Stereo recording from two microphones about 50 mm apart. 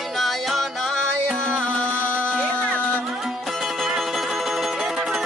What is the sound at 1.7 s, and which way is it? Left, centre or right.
Music, left.